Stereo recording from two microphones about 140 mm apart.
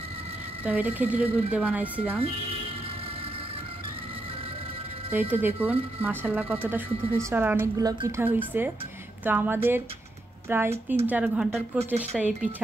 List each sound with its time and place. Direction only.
0.7 s speech: 10° right (ahead or behind)
5.1 s speech: 15° right (ahead or behind)
8.2 s speech: 15° right (ahead or behind)